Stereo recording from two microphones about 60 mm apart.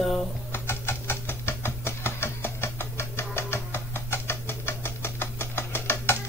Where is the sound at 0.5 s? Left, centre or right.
Left.